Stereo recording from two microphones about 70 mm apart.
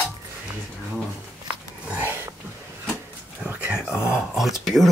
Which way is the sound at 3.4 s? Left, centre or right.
Centre.